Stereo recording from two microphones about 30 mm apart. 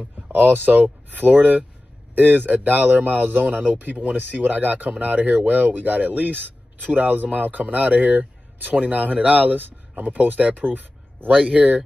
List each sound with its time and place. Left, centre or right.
0.3 s speech: right
2.1 s speech: right
3.2 s speech: right
3.4 s speech: right
3.7 s speech: right
11.5 s speech: right